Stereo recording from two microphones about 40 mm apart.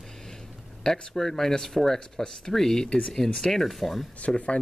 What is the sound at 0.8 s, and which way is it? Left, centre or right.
Speech, centre.